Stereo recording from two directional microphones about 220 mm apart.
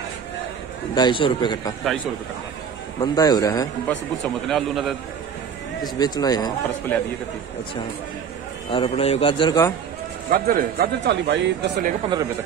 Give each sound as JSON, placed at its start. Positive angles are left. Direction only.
{"t": 0.9, "sound": "a man's voice", "side_deg": 20}
{"t": 3.0, "sound": "speech", "side_deg": 15}
{"t": 4.5, "sound": "a man's voice", "side_deg": 0}
{"t": 5.9, "sound": "speech", "side_deg": 20}
{"t": 8.6, "sound": "a man's voice", "side_deg": 25}
{"t": 10.3, "sound": "speech", "side_deg": -40}